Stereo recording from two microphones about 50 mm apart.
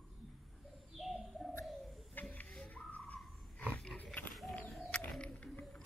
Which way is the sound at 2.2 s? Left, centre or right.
Left.